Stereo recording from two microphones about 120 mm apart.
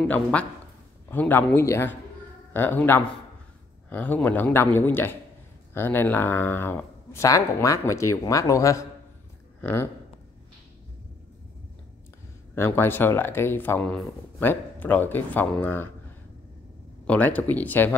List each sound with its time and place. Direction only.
0.1 s speech: 10° left (ahead or behind)
12.5 s speech: 20° left (ahead or behind)
17.0 s speech: 10° left (ahead or behind)